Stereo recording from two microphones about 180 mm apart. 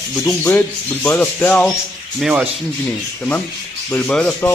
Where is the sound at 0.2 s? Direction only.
5° left (ahead or behind).